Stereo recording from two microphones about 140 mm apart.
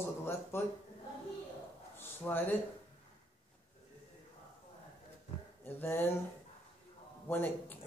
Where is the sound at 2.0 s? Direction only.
15° left (ahead or behind).